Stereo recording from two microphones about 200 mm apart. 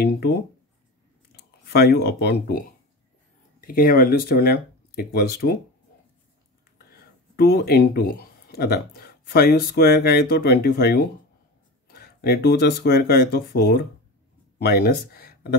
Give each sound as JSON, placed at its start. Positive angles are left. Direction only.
{"t": 0.0, "sound": "speech", "side_deg": 55}
{"t": 1.7, "sound": "speech", "side_deg": 55}
{"t": 3.6, "sound": "speech", "side_deg": 45}
{"t": 7.3, "sound": "speech", "side_deg": 50}